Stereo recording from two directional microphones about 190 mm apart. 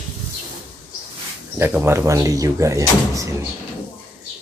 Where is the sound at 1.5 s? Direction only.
10° right (ahead or behind).